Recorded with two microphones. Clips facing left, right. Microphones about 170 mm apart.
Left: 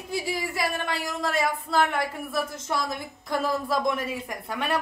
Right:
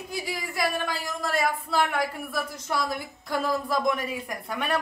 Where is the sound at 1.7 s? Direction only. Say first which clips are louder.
Left 1 dB; centre (ahead or behind).